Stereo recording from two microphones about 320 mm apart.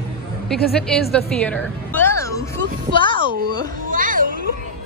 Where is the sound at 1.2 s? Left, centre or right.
Centre.